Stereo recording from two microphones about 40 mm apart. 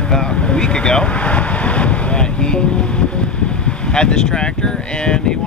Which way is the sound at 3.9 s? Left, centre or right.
Left.